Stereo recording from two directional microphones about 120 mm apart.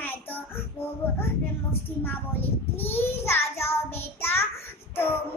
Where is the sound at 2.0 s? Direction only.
15° left (ahead or behind).